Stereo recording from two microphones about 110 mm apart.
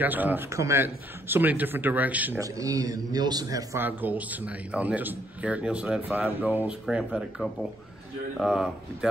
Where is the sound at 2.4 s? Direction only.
30° right (ahead or behind).